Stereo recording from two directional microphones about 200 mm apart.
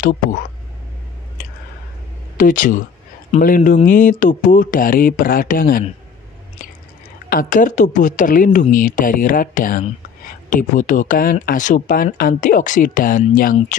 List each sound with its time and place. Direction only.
0.0 s a woman's voice: 40° left (ahead or behind)
2.3 s a woman's voice: 40° left (ahead or behind)
7.2 s a woman's voice: 45° left (ahead or behind)